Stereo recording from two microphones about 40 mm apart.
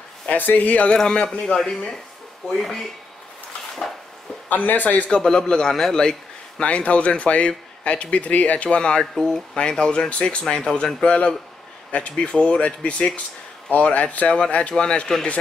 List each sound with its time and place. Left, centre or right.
0.3 s a man's voice: left
0.9 s a man's voice: centre
3.8 s speech: left
4.5 s a man's voice: left
5.2 s a man's voice: centre
6.6 s speech: left
8.6 s speech: left
9.0 s a man's voice: centre
9.6 s speech: left